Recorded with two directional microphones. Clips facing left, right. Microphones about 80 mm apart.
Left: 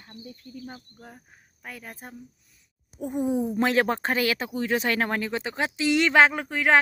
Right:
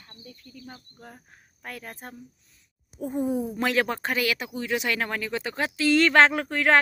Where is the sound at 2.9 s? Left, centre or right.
Centre.